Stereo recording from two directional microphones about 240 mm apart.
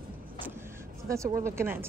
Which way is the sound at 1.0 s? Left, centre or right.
Centre.